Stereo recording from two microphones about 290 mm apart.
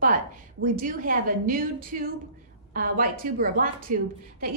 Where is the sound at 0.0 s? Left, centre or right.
Right.